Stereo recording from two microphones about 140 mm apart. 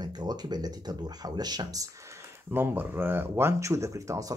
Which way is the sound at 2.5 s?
15° right (ahead or behind).